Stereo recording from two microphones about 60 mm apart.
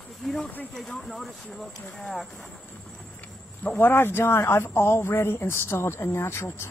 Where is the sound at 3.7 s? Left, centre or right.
Left.